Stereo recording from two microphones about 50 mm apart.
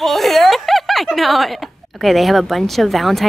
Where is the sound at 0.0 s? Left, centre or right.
Centre.